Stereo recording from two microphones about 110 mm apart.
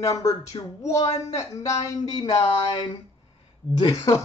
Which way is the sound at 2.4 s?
55° left (ahead or behind).